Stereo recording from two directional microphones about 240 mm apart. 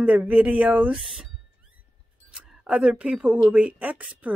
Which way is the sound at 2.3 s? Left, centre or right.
Centre.